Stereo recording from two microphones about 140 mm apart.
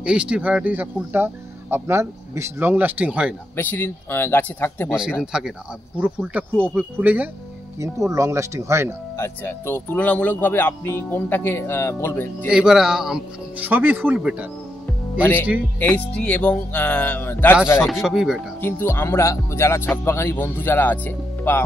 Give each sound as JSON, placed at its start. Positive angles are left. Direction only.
{"t": 0.0, "sound": "speech", "side_deg": -5}
{"t": 3.5, "sound": "speech", "side_deg": 15}
{"t": 4.8, "sound": "speech", "side_deg": -5}
{"t": 7.8, "sound": "speech", "side_deg": -20}
{"t": 9.1, "sound": "speech", "side_deg": 15}
{"t": 12.4, "sound": "speech", "side_deg": -5}
{"t": 15.8, "sound": "speech", "side_deg": 10}
{"t": 17.7, "sound": "speech", "side_deg": 0}
{"t": 18.6, "sound": "speech", "side_deg": 15}